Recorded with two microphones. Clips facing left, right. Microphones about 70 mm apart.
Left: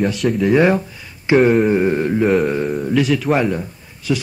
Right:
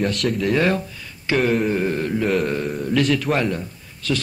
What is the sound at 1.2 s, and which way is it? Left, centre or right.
Mantra, centre.